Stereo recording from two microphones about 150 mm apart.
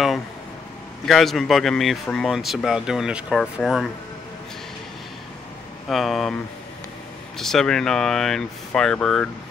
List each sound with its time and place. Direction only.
1.0 s speech: centre (ahead or behind)
5.9 s speech: centre (ahead or behind)
7.3 s speech: centre (ahead or behind)